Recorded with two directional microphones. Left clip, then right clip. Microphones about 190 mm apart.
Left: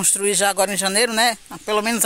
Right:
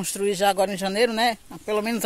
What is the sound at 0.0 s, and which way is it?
Speech, 10° left (ahead or behind).